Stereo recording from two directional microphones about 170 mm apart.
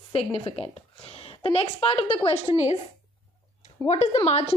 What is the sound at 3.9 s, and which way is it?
Speech, 40° left (ahead or behind).